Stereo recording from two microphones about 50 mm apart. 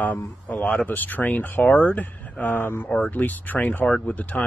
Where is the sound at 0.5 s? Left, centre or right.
Left.